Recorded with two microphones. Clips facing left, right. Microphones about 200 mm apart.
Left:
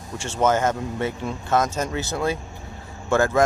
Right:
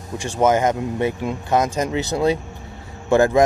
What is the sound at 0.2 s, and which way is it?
Speech, 15° right (ahead or behind).